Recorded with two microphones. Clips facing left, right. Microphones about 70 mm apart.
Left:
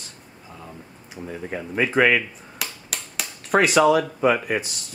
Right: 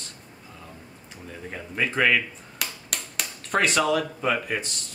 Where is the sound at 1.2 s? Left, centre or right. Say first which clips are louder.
Left 6 dB; centre.